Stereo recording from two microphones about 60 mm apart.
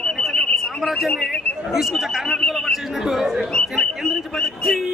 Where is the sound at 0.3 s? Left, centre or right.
Centre.